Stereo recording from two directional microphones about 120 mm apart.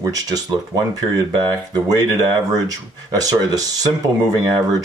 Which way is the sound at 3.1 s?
30° right (ahead or behind).